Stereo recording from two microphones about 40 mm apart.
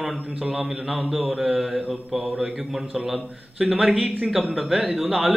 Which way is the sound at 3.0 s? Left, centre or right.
Centre.